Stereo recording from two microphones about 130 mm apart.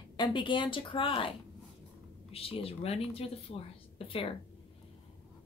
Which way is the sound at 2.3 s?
45° left (ahead or behind).